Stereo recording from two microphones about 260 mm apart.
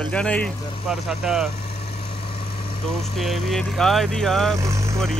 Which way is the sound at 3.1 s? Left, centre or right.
Centre.